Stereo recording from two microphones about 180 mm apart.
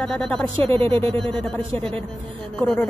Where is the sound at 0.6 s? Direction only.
30° right (ahead or behind).